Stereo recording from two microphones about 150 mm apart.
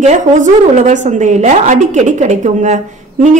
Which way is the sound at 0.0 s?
50° right (ahead or behind).